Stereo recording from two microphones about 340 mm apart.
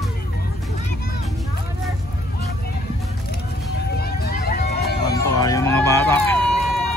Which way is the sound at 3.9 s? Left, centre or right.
Left.